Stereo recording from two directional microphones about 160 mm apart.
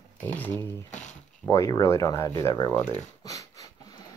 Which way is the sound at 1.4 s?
20° left (ahead or behind).